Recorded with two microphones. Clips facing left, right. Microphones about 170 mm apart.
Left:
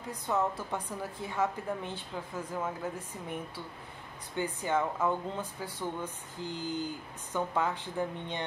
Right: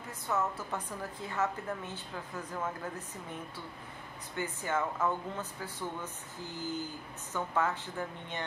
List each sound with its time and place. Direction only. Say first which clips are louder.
0.1 s speech: left 3 dB; 15° left (ahead or behind)
4.4 s speech: left 3 dB; 15° left (ahead or behind)